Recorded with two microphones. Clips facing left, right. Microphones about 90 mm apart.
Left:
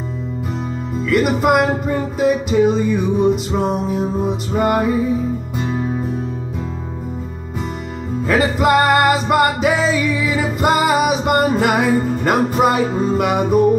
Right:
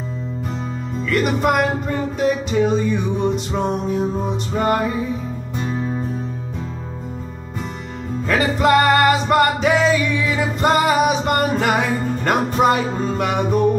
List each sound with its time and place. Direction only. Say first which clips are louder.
1.0 s music: left 3 dB; 5° left (ahead or behind)
8.3 s music: left 1 dB; 5° left (ahead or behind)